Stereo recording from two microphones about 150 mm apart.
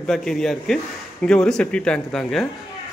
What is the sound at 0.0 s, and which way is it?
A man's voice, 5° left (ahead or behind).